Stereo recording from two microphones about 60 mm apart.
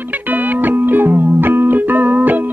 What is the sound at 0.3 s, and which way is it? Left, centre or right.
Music, right.